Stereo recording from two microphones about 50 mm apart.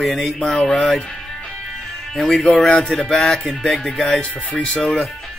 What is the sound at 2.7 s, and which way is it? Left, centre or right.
Speech, centre.